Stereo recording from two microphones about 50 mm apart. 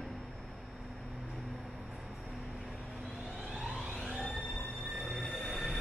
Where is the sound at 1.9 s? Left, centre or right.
Centre.